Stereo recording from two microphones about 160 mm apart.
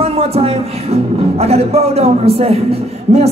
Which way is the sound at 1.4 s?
40° right (ahead or behind).